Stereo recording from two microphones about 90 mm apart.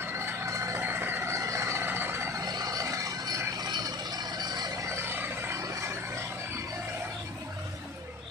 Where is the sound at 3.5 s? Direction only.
50° right (ahead or behind).